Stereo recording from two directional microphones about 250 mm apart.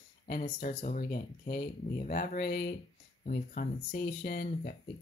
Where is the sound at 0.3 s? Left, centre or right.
Left.